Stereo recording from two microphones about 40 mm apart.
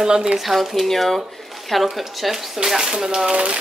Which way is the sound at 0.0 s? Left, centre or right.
Centre.